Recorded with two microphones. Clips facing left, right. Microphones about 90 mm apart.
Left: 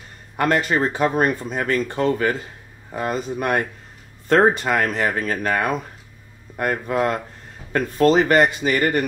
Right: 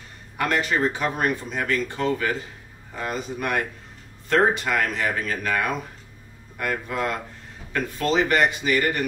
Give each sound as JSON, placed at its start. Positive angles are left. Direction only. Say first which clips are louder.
{"t": 0.4, "sound": "speech", "louder": "left 3 dB", "side_deg": 40}